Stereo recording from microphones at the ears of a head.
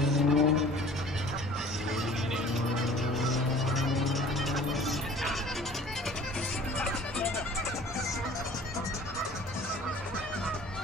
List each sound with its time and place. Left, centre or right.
0.2 s vehicle: left